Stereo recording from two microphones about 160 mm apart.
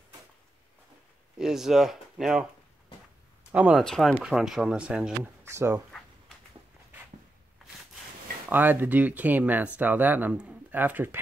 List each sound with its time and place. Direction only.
1.4 s speech: 5° right (ahead or behind)
3.5 s speech: 5° right (ahead or behind)
5.4 s speech: 15° right (ahead or behind)
5.9 s a sound: 5° left (ahead or behind)
8.5 s speech: 10° right (ahead or behind)